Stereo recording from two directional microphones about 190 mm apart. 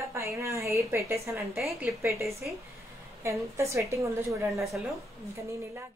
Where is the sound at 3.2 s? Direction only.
15° right (ahead or behind).